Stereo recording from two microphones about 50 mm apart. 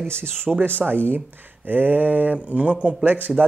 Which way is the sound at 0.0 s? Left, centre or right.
Right.